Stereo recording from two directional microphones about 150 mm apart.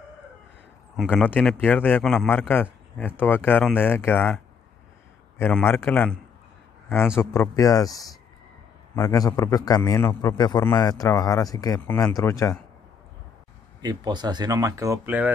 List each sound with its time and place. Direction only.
1.1 s speech: 10° left (ahead or behind)
5.4 s speech: 15° left (ahead or behind)
7.2 s speech: 20° left (ahead or behind)
13.7 s speech: 30° right (ahead or behind)
15.0 s speech: 10° right (ahead or behind)